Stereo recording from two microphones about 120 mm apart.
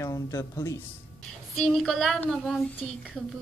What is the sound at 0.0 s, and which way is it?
Speech, 25° left (ahead or behind).